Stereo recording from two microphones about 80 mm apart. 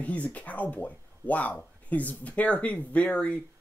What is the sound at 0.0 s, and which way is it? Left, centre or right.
Speech, centre.